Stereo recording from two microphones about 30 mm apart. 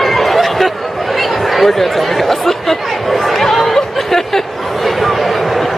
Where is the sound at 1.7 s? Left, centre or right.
Centre.